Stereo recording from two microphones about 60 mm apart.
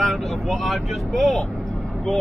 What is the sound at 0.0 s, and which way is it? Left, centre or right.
Speech, centre.